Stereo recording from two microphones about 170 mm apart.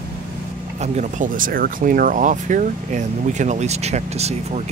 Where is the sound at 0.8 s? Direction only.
45° right (ahead or behind).